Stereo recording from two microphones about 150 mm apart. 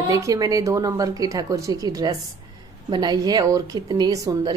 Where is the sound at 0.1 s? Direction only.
25° right (ahead or behind).